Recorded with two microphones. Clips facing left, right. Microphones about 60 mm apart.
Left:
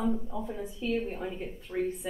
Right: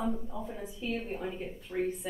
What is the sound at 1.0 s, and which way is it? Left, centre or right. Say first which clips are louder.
A woman's voice: left 2 dB; centre.